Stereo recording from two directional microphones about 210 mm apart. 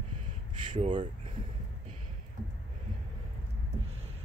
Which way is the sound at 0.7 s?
25° right (ahead or behind).